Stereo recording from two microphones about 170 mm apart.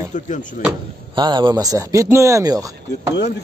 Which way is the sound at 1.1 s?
25° right (ahead or behind).